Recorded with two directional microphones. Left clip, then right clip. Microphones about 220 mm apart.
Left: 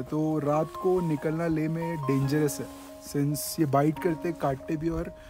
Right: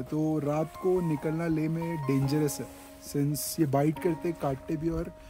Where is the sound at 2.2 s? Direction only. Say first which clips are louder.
Left 2 dB; 15° left (ahead or behind).